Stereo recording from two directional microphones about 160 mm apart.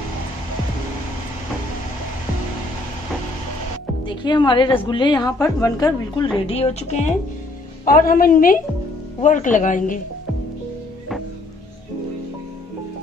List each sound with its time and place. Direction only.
4.0 s a woman's voice: 30° left (ahead or behind)
6.4 s speech: 40° left (ahead or behind)
7.8 s a woman's voice: 65° left (ahead or behind)